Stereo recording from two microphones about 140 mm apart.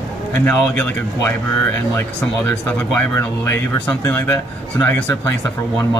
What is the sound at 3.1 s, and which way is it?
Speech, 20° left (ahead or behind).